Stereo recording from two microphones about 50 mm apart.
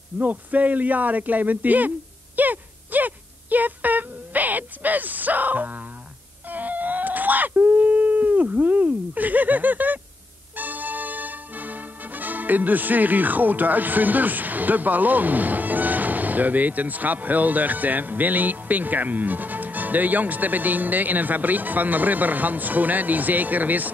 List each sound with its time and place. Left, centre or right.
0.2 s speech: right
6.5 s screaming: right
10.5 s music: right